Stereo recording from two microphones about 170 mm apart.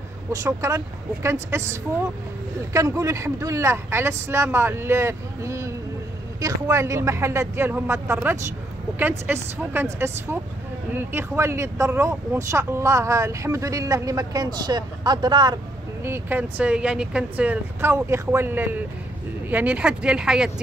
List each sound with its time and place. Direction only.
0.3 s speech: 15° right (ahead or behind)